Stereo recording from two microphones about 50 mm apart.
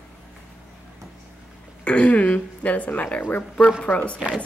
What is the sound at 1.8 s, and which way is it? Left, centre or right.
Speech, left.